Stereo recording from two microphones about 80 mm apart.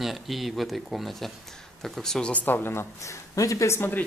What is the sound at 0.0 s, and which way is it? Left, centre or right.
Speech, centre.